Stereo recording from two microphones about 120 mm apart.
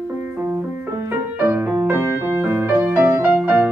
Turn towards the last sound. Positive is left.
turn(degrees=-10)  # may be behind; listen again after turning